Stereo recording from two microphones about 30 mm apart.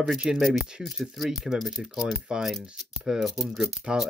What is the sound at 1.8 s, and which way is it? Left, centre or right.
Speech, centre.